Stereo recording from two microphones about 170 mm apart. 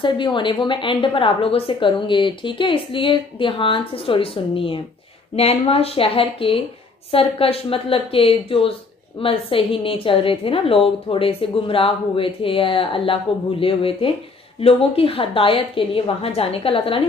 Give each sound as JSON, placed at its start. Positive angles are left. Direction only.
{"t": 0.0, "sound": "a woman's voice", "side_deg": 30}